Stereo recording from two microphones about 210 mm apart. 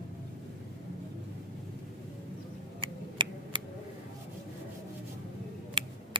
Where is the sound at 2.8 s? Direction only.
25° right (ahead or behind).